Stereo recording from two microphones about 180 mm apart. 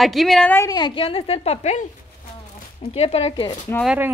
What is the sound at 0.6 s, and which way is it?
A woman's voice, 25° left (ahead or behind).